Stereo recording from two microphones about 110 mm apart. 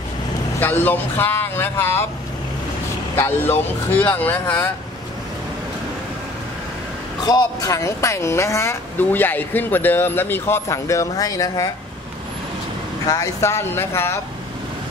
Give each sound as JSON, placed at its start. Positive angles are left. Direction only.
{"t": 0.6, "sound": "speech", "side_deg": 15}
{"t": 3.2, "sound": "speech", "side_deg": 20}
{"t": 7.2, "sound": "speech", "side_deg": 35}
{"t": 13.0, "sound": "speech", "side_deg": 35}